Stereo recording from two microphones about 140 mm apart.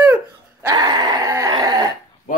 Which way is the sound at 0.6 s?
30° right (ahead or behind).